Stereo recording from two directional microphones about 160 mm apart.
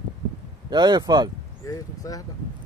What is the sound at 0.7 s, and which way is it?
Speech, 25° right (ahead or behind).